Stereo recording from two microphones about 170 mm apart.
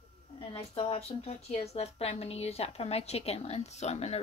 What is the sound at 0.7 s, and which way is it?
A woman's voice, 35° left (ahead or behind).